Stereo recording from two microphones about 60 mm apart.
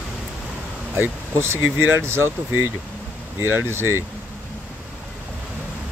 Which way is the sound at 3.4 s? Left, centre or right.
Right.